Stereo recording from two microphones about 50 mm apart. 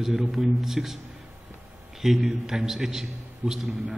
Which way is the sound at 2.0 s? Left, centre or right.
Centre.